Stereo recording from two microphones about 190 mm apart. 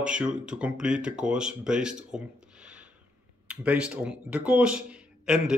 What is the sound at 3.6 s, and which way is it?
Speech, 5° right (ahead or behind).